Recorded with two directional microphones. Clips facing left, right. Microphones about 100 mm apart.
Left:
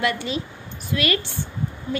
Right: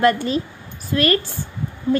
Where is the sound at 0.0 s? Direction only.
45° right (ahead or behind).